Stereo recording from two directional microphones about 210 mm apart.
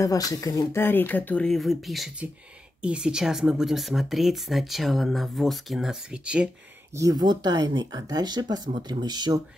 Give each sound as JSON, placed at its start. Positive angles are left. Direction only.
{"t": 0.0, "sound": "speech", "side_deg": 15}
{"t": 7.0, "sound": "speech", "side_deg": -20}